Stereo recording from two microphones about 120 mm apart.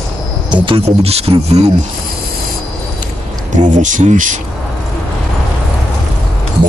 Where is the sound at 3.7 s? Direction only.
90° right.